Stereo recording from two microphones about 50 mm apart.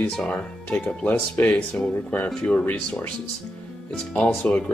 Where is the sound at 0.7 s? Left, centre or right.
Left.